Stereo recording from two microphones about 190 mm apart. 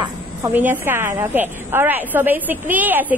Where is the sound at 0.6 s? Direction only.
10° right (ahead or behind).